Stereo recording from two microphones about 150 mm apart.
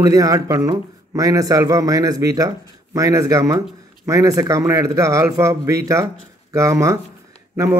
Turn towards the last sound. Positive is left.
turn(degrees=-20)  # may be behind; listen again after turning